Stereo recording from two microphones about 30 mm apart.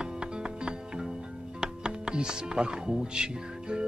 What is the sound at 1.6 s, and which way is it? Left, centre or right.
Speech, right.